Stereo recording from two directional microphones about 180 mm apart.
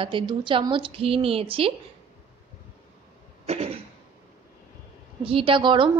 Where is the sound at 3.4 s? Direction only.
35° right (ahead or behind).